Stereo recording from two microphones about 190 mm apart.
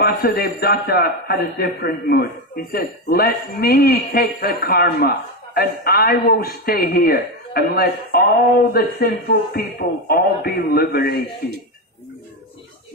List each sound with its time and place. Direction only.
0.0 s speech: 50° left (ahead or behind)